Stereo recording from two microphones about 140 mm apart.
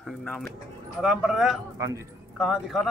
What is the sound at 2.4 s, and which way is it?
Speech, 5° right (ahead or behind).